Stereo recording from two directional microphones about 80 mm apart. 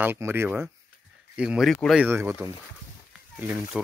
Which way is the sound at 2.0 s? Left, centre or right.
Right.